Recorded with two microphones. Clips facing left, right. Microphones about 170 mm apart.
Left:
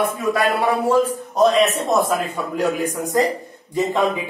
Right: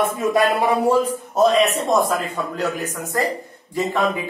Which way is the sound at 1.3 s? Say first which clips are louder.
Even; centre (ahead or behind).